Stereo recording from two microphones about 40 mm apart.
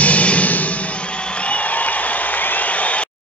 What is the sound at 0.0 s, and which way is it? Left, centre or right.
Music, left.